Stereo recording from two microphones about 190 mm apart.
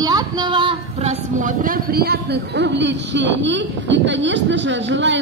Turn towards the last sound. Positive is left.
turn(degrees=-70)  # may be behind; listen again after turning